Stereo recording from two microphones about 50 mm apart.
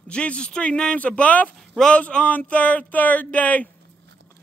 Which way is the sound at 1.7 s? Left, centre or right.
Centre.